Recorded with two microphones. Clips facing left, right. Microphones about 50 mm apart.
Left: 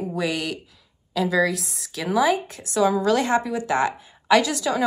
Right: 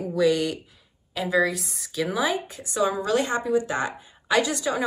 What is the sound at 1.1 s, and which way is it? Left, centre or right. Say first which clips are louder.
A woman's voice: left 2 dB; left.